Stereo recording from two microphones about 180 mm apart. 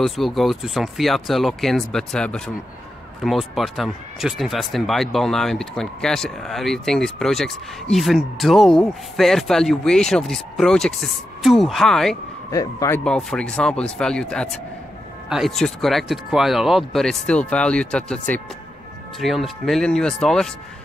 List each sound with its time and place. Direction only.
0.0 s speech: centre (ahead or behind)
12.4 s speech: 20° left (ahead or behind)
13.0 s speech: 5° left (ahead or behind)